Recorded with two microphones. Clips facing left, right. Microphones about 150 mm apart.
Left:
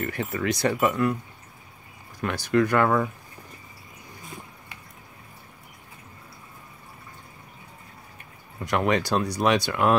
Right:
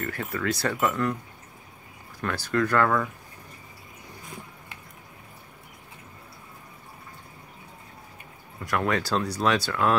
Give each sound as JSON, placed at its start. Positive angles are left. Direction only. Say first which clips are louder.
{"t": 0.0, "sound": "speech", "louder": "left 2 dB", "side_deg": 20}
{"t": 2.2, "sound": "speech", "louder": "left 3 dB", "side_deg": 15}
{"t": 8.6, "sound": "speech", "louder": "left 3 dB", "side_deg": 20}